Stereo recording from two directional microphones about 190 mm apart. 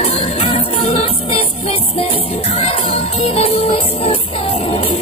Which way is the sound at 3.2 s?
30° left (ahead or behind).